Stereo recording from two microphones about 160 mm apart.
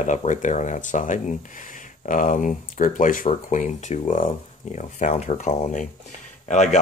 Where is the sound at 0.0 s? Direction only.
50° left (ahead or behind).